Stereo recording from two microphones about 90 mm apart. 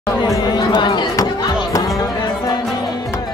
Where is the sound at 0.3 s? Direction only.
50° left (ahead or behind).